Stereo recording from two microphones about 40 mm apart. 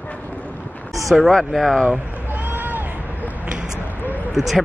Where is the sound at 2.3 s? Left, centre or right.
Right.